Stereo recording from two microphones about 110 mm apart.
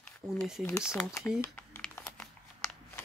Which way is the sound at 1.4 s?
20° left (ahead or behind).